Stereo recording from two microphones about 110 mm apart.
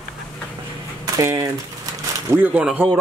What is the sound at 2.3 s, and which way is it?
Speech, 15° right (ahead or behind).